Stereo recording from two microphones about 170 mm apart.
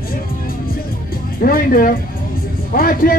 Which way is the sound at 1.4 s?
55° left (ahead or behind).